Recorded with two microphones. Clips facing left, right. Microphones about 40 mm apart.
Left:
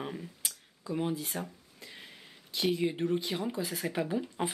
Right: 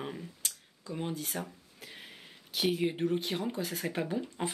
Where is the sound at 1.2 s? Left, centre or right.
Centre.